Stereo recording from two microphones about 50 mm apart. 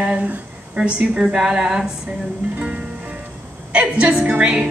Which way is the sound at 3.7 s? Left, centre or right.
Right.